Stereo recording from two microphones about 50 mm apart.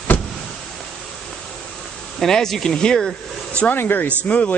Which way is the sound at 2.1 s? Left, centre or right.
Centre.